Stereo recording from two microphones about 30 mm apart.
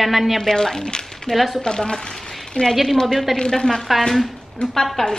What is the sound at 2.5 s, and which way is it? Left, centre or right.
Speech, left.